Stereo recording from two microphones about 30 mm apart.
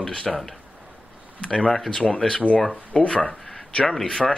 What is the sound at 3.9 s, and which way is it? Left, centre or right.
Speech, centre.